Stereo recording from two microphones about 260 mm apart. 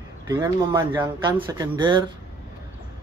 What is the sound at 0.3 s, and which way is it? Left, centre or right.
Speech, centre.